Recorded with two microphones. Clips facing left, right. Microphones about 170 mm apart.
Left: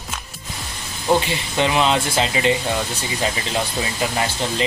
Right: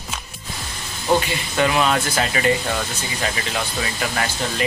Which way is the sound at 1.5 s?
20° left (ahead or behind).